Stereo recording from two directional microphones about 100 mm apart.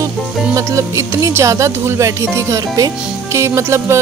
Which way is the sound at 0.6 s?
30° right (ahead or behind).